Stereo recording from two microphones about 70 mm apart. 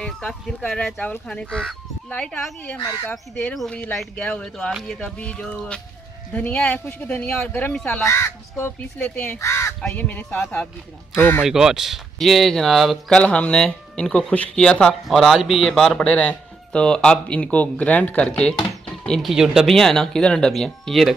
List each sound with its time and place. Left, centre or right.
1.2 s speech: centre
2.9 s speech: left
4.2 s speech: centre
8.0 s speech: left
8.9 s speech: left
9.4 s crow: left
9.9 s speech: left
11.4 s speech: centre
13.1 s speech: centre
15.0 s speech: centre
16.1 s speech: centre
19.2 s speech: centre
19.7 s speech: centre